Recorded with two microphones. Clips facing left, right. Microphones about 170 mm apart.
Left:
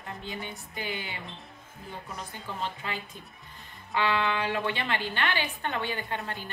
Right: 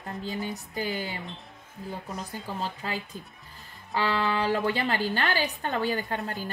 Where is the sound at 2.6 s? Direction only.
40° right (ahead or behind).